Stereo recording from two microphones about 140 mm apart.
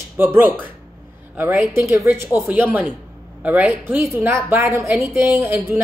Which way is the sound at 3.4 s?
10° right (ahead or behind).